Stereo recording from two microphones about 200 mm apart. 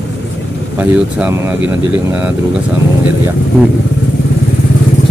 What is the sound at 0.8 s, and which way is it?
Speech, 10° right (ahead or behind).